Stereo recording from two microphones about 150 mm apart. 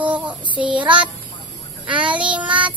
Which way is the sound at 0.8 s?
35° right (ahead or behind).